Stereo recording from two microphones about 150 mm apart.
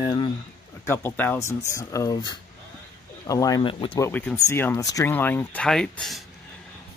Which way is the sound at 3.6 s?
35° left (ahead or behind).